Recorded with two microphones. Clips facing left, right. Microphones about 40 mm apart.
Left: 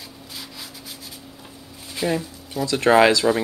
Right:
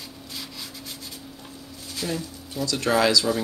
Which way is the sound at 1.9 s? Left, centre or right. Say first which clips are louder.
Left 6 dB; left.